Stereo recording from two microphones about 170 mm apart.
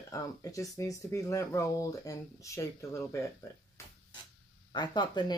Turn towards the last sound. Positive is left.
turn(degrees=25)  # may be behind; listen again after turning